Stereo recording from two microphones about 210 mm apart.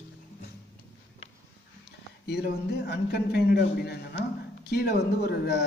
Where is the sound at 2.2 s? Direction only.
50° left (ahead or behind).